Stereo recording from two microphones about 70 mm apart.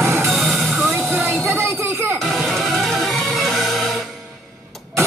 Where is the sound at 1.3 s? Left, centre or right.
Right.